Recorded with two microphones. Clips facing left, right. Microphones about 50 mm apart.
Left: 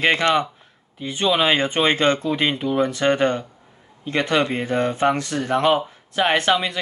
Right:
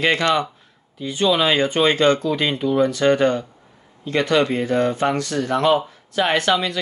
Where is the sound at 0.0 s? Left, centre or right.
Left.